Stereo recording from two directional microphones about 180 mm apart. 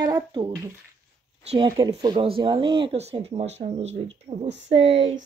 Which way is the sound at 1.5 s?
30° right (ahead or behind).